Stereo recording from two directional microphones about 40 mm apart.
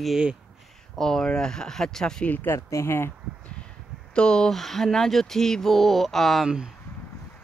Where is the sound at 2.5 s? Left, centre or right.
Left.